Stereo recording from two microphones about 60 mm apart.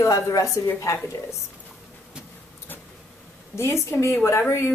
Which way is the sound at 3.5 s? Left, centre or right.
Left.